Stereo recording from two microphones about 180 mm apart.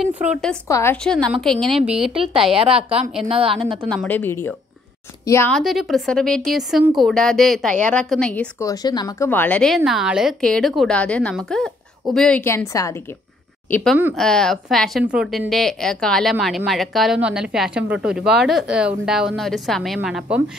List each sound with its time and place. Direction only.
0.0 s speech: 5° right (ahead or behind)
0.7 s speech: 15° left (ahead or behind)
1.0 s speech: 5° left (ahead or behind)
3.3 s a woman's voice: 30° right (ahead or behind)
3.9 s speech: 5° left (ahead or behind)
5.5 s speech: centre (ahead or behind)
8.6 s speech: 20° left (ahead or behind); by 20.4 s 5° right (ahead or behind)